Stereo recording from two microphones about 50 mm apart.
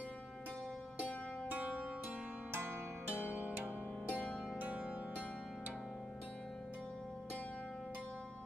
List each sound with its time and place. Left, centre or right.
1.5 s music: right
3.3 s music: right